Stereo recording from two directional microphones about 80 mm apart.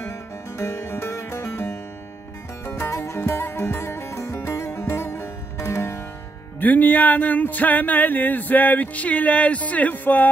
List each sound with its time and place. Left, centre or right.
0.6 s music: left
6.6 s speech: left